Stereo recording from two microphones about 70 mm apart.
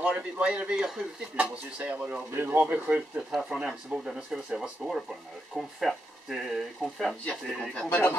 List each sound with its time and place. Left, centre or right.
0.0 s speech: centre
2.3 s speech: right; by 7.2 s centre
7.9 s speech: left